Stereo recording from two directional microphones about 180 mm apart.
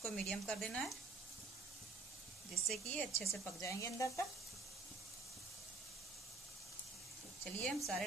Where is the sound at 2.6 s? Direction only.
5° left (ahead or behind).